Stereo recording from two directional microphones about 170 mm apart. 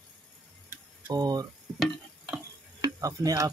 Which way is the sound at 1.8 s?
5° right (ahead or behind).